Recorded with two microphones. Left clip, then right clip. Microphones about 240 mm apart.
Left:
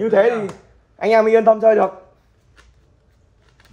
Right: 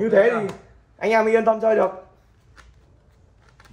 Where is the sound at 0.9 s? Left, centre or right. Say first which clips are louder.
Left 5 dB; left.